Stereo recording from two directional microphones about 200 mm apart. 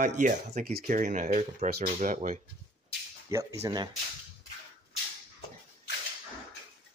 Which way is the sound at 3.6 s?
20° right (ahead or behind).